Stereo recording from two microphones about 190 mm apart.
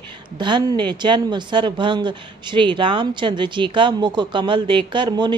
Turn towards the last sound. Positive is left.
turn(degrees=-25)  # may be behind; listen again after turning